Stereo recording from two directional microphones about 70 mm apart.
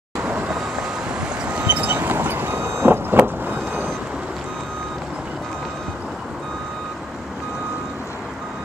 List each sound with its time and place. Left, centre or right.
0.2 s vehicle: centre